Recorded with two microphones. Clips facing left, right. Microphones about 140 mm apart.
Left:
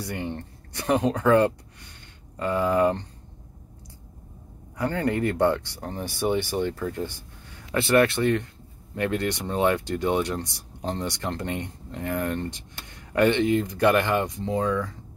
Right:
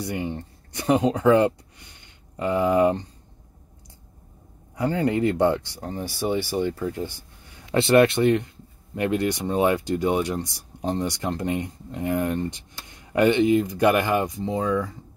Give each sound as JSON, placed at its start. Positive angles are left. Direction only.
{"t": 0.0, "sound": "speech", "side_deg": -15}
{"t": 4.7, "sound": "speech", "side_deg": -15}
{"t": 5.8, "sound": "speech", "side_deg": -5}
{"t": 7.7, "sound": "speech", "side_deg": -25}